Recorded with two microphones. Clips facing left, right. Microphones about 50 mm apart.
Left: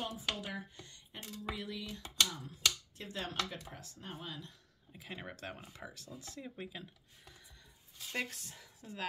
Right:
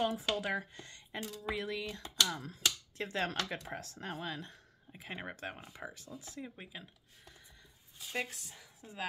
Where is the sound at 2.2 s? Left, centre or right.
Right.